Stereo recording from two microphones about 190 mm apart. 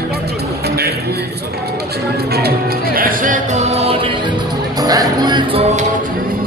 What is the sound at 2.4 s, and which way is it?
Music, 55° right (ahead or behind).